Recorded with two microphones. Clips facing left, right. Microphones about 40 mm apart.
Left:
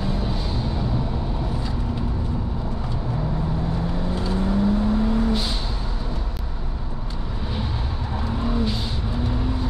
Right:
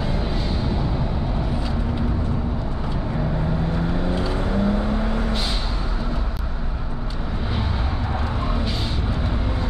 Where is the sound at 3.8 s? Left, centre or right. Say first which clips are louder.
Right 3 dB; right.